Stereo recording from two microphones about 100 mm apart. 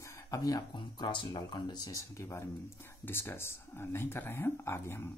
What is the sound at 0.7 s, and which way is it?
Speech, 50° left (ahead or behind).